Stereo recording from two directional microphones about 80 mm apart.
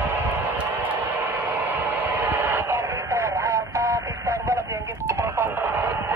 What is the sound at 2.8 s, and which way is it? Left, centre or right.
Radio, right.